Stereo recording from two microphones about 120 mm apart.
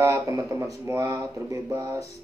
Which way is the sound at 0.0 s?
25° right (ahead or behind).